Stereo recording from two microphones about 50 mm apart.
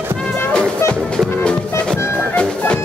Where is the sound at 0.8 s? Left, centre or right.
Left.